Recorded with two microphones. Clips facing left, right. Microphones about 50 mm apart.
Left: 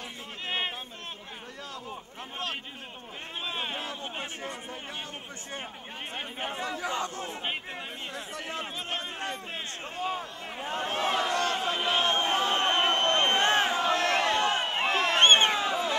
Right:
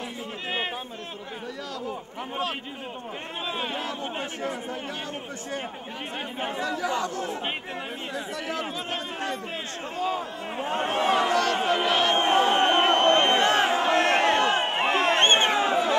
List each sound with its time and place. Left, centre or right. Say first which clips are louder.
1.9 s a man's voice: right 7 dB; centre
3.8 s speech: right 5 dB; right
6.8 s speech: right 5 dB; left
10.7 s speech: right 5 dB; right
11.3 s a sound: right 5 dB; right
13.5 s crowd: right 3 dB; right
15.3 s a sound: right 3 dB; right